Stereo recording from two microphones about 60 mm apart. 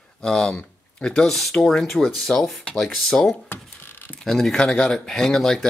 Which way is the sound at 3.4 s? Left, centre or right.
Left.